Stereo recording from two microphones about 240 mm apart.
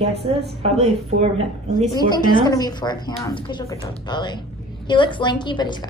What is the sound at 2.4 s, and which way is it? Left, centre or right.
A woman's voice, centre.